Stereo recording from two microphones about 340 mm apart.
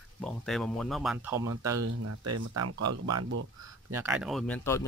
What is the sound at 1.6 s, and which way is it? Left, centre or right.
Speech, right.